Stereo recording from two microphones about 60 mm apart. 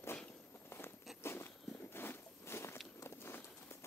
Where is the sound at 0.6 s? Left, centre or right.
Left.